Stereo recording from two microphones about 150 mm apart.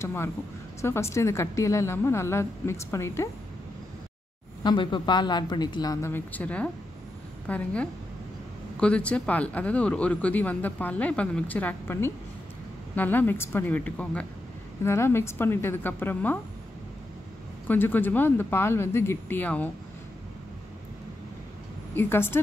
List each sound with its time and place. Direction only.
0.0 s a woman's voice: 15° left (ahead or behind)
4.6 s a woman's voice: 30° left (ahead or behind); by 16.3 s 15° left (ahead or behind)
17.6 s speech: 15° left (ahead or behind)
21.9 s speech: 15° left (ahead or behind)